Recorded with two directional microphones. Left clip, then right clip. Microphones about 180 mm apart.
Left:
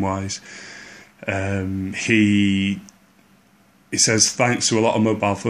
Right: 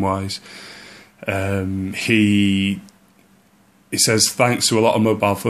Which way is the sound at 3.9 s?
5° right (ahead or behind).